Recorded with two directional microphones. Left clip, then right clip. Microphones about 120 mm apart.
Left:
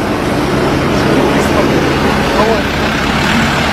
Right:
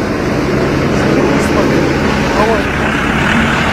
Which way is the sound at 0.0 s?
40° left (ahead or behind).